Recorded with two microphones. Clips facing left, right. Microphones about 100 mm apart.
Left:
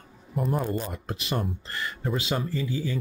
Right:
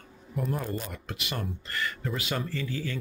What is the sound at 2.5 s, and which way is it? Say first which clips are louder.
Speech: left 4 dB; 15° left (ahead or behind).